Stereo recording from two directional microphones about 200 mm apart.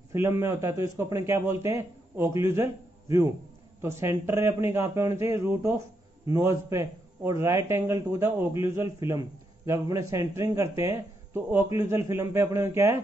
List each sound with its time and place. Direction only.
0.1 s a man's voice: 10° right (ahead or behind)